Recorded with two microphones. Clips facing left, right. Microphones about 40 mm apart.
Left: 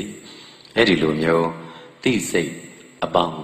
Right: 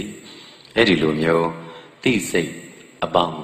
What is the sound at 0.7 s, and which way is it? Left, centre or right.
Speech, right.